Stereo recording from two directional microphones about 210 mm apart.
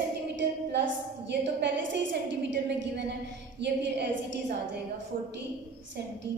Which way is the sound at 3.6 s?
55° right (ahead or behind).